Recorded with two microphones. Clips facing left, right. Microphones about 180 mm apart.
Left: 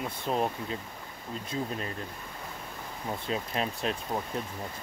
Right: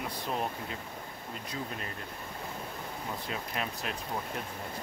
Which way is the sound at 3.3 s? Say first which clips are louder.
Left 7 dB; 30° left (ahead or behind).